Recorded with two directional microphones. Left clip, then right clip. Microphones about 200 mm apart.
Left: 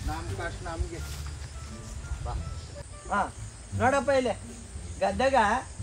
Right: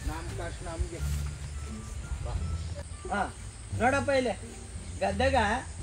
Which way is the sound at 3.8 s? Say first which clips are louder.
Left 2 dB; 20° left (ahead or behind).